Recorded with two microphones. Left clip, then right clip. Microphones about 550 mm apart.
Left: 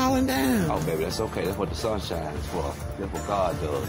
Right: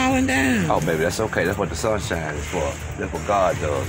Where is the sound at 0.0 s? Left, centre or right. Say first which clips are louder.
Right 4 dB; left.